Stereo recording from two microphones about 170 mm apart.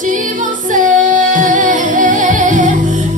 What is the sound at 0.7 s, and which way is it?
Music, 50° right (ahead or behind).